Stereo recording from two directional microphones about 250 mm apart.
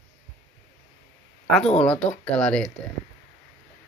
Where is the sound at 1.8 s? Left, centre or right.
Centre.